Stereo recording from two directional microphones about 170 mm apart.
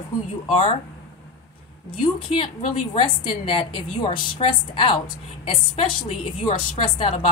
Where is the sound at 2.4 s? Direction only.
35° left (ahead or behind).